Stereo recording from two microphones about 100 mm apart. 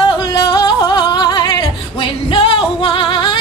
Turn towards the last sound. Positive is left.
turn(degrees=55)  # may be behind; listen again after turning